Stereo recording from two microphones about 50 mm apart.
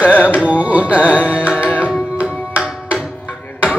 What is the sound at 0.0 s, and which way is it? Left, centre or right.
Music, left.